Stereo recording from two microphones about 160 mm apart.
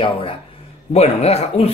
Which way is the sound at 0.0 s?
35° left (ahead or behind).